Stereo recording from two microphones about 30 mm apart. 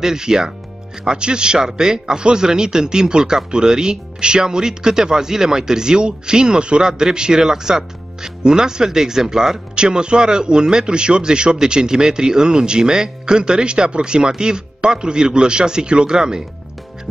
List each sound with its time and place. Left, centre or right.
0.0 s speech: right
6.9 s speech: right
9.8 s speech: right